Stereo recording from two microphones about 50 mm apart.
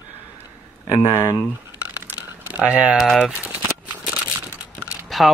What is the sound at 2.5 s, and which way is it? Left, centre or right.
Speech, right.